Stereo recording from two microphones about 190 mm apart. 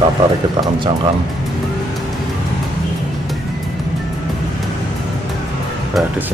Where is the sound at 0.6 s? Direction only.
25° right (ahead or behind).